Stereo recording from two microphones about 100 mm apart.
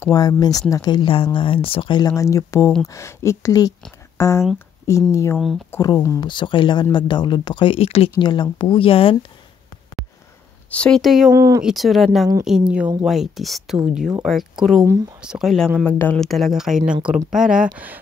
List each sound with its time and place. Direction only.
0.0 s speech: 35° left (ahead or behind); by 2.0 s 55° left (ahead or behind)
2.0 s speech: 35° left (ahead or behind)
6.2 s speech: 55° left (ahead or behind); by 8.1 s 70° left (ahead or behind)
8.2 s speech: 50° left (ahead or behind); by 9.1 s 65° left (ahead or behind)
10.7 s speech: 10° left (ahead or behind)
11.0 s speech: 5° right (ahead or behind)
11.3 s speech: 35° right (ahead or behind)
11.6 s speech: centre (ahead or behind)
15.8 s speech: 15° left (ahead or behind)
16.2 s speech: centre (ahead or behind)